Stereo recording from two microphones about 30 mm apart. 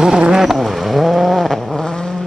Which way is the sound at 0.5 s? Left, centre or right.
Centre.